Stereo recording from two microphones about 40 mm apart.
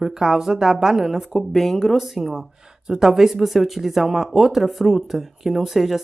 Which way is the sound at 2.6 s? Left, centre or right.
Centre.